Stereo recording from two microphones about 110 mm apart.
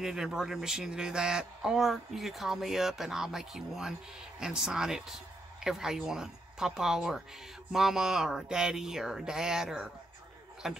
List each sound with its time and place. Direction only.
0.0 s speech: 5° right (ahead or behind)